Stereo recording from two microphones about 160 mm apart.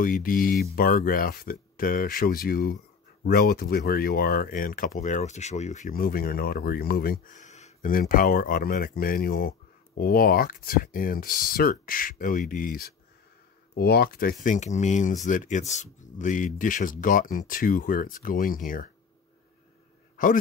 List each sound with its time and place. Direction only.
0.0 s speech: 60° left (ahead or behind)
13.7 s speech: 75° left (ahead or behind); by 18.9 s 60° left (ahead or behind)